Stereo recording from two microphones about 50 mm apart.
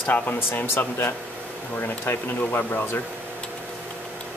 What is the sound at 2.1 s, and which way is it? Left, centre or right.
Speech, left.